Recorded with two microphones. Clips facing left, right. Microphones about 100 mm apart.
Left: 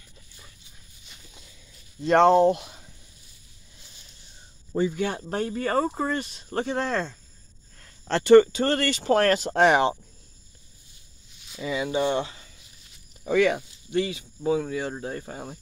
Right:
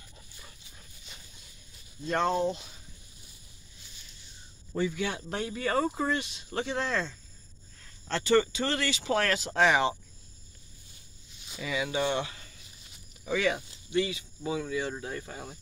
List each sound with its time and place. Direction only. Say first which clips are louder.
2.0 s speech: left 10 dB; 85° left; by 2.8 s 60° left (ahead or behind)
4.7 s speech: left 5 dB; 40° left (ahead or behind)
7.8 s speech: left 7 dB; 60° left (ahead or behind)
11.6 s speech: left 5 dB; 30° left (ahead or behind)
13.2 s speech: left 7 dB; 50° left (ahead or behind)